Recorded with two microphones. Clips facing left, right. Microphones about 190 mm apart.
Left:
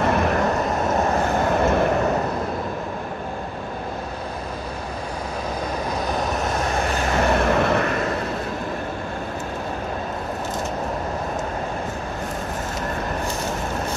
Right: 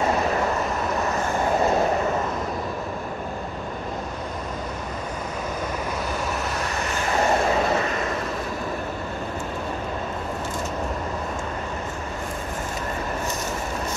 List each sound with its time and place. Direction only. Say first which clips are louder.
0.0 s vehicle: left 2 dB; 60° left (ahead or behind)
5.9 s vehicle: left 3 dB; 40° left (ahead or behind)
7.2 s vehicle: left 1 dB; 60° left (ahead or behind)